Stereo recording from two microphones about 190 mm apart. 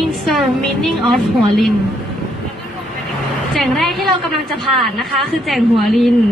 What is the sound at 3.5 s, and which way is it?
A woman's voice, centre (ahead or behind).